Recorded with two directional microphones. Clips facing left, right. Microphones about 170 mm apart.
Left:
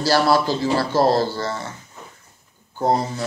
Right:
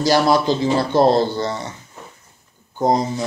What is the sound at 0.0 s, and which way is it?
A man's voice, 15° right (ahead or behind).